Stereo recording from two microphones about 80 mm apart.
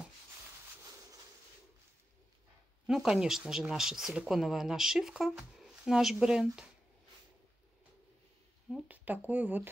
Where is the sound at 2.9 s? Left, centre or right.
Centre.